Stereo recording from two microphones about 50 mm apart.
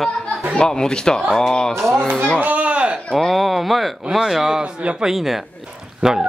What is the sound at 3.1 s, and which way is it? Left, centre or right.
Speech, centre.